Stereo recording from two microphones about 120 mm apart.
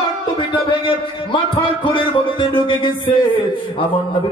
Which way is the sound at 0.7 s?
45° left (ahead or behind).